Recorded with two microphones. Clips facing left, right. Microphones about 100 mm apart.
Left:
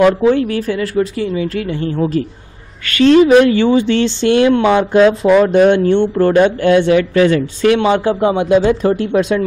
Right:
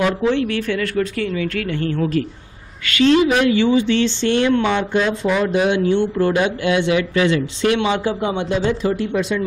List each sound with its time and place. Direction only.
0.3 s speech: 35° left (ahead or behind)
0.7 s a woman's voice: 25° left (ahead or behind)
2.8 s speech: 45° left (ahead or behind)
4.9 s speech: 60° left (ahead or behind); by 8.9 s 45° left (ahead or behind)